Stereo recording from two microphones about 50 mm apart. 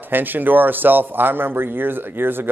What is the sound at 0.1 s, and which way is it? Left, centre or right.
A man's voice, right.